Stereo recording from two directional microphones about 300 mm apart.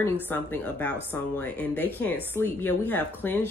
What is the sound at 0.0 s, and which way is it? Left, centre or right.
Speech, centre.